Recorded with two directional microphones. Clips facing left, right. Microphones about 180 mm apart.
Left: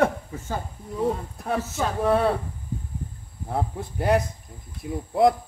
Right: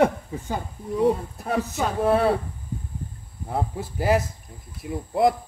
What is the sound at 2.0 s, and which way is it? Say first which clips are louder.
Speech: right 1 dB; centre (ahead or behind).